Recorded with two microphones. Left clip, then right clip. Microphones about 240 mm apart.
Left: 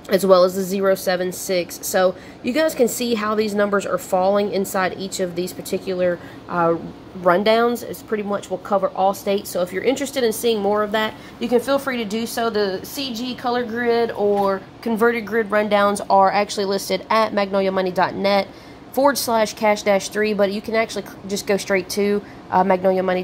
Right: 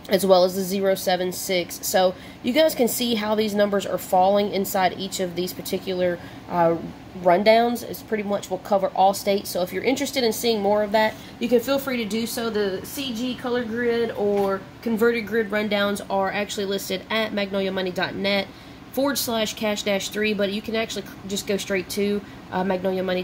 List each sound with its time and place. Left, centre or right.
0.1 s a woman's voice: centre